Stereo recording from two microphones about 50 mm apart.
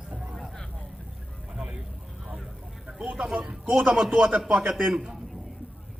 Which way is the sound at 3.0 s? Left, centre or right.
Centre.